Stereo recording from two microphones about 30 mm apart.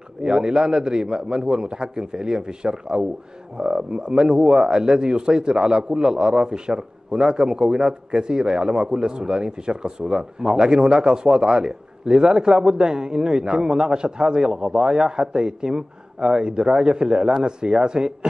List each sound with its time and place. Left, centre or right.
0.2 s speech: right